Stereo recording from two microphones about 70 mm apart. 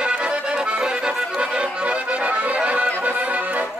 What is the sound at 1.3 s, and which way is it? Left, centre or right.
Accordion, centre.